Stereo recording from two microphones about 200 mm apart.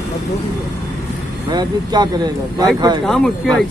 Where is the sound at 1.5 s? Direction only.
20° right (ahead or behind).